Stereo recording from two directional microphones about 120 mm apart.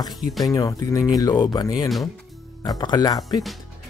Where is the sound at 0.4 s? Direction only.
30° left (ahead or behind).